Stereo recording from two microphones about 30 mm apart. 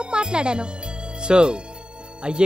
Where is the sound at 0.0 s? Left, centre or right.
Right.